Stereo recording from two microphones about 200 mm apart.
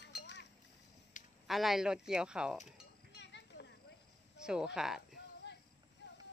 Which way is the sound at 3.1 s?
60° left (ahead or behind).